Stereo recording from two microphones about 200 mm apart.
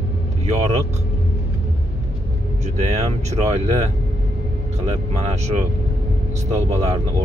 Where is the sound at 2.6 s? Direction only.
35° right (ahead or behind).